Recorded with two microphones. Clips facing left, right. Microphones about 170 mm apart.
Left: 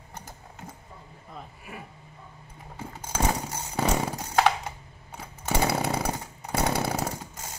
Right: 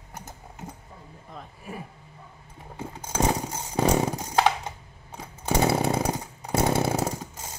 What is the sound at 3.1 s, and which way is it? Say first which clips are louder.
Chainsaw: right 3 dB; 20° right (ahead or behind).